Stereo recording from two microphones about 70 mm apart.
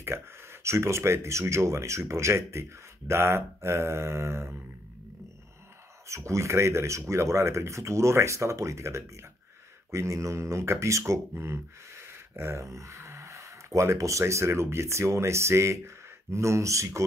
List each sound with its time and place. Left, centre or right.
0.0 s speech: right
6.0 s speech: right